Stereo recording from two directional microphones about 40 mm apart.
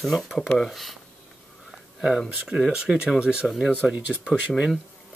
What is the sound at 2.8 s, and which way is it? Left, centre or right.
Speech, right.